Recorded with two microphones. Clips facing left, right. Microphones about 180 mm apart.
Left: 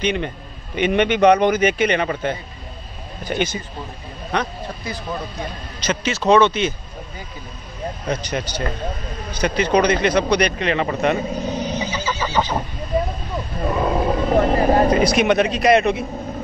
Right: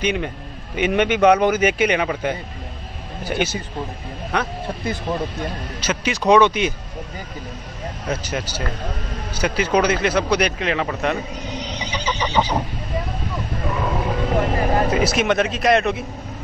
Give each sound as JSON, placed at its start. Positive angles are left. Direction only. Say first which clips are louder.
{"t": 0.0, "sound": "speech", "louder": "even", "side_deg": -5}
{"t": 5.8, "sound": "speech", "louder": "left 2 dB", "side_deg": -10}
{"t": 8.1, "sound": "speech", "louder": "left 1 dB", "side_deg": -5}
{"t": 11.5, "sound": "neigh", "louder": "left 5 dB", "side_deg": 45}
{"t": 11.9, "sound": "neigh", "louder": "left 1 dB", "side_deg": -15}
{"t": 12.4, "sound": "speech", "louder": "right 1 dB", "side_deg": -10}
{"t": 13.7, "sound": "vehicle", "louder": "left 4 dB", "side_deg": 35}
{"t": 14.9, "sound": "speech", "louder": "left 3 dB", "side_deg": -5}